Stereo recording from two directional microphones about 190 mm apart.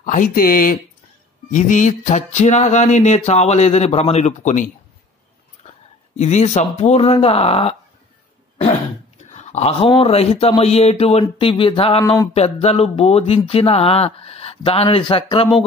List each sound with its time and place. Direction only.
0.0 s speech: 45° left (ahead or behind)
6.1 s speech: 35° left (ahead or behind)
9.3 s speech: 35° left (ahead or behind)